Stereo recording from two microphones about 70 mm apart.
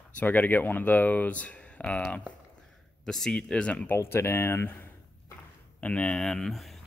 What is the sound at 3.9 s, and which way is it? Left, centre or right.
Speech, left.